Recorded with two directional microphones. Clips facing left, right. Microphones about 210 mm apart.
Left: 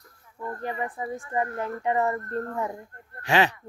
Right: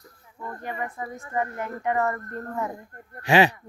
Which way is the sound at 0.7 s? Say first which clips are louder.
Left 2 dB; 30° left (ahead or behind).